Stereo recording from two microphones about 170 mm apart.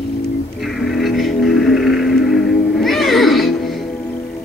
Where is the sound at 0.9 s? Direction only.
Centre (ahead or behind).